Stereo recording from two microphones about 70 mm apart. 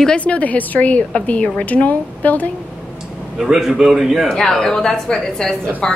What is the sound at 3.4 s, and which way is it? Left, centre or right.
Speech, centre.